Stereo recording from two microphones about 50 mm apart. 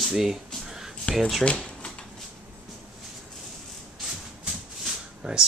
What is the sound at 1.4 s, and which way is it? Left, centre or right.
Speech, left.